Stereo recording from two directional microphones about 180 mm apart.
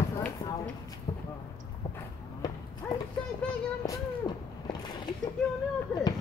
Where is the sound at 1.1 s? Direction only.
30° left (ahead or behind).